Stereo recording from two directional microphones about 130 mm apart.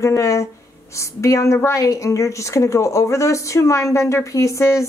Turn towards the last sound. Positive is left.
turn(degrees=20)  # may be behind; listen again after turning